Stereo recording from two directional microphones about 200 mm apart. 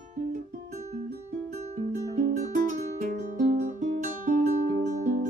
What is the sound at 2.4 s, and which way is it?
Music, 35° right (ahead or behind).